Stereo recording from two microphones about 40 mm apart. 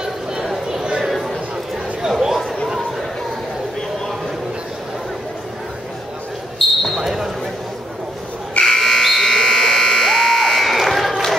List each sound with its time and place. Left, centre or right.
0.0 s a sound: centre
2.0 s chatter: centre
6.6 s basketball bounce: centre
7.0 s basketball bounce: centre
8.6 s buzzer: centre